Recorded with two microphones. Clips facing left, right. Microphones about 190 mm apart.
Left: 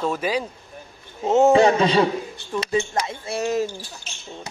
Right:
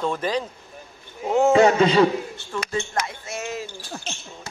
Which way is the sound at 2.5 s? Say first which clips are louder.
Left 5 dB; 20° left (ahead or behind).